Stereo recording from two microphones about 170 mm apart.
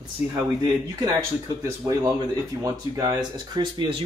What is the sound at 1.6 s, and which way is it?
Speech, 20° right (ahead or behind).